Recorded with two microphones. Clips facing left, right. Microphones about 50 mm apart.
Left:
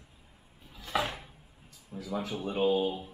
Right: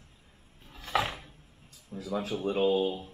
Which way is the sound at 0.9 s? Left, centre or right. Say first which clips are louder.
Right 2 dB; centre.